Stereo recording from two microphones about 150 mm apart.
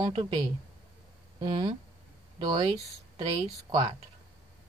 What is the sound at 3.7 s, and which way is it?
Speech, 30° right (ahead or behind).